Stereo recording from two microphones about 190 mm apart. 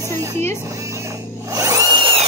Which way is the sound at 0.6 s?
15° right (ahead or behind).